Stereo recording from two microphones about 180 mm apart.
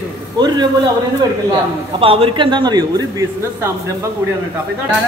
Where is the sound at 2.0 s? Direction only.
30° right (ahead or behind).